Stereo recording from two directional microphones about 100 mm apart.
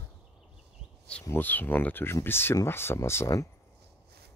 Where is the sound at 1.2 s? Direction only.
20° left (ahead or behind).